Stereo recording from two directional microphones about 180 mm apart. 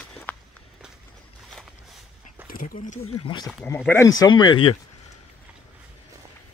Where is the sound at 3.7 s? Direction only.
10° left (ahead or behind).